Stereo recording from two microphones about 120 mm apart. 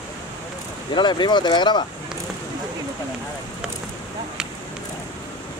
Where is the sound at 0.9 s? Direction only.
40° left (ahead or behind).